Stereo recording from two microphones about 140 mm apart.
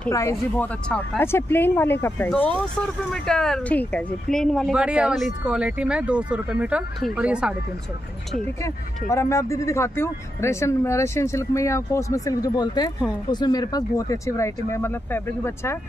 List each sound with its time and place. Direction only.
0.1 s speech: 20° left (ahead or behind)
0.8 s speech: 5° left (ahead or behind)
9.1 s speech: 20° left (ahead or behind)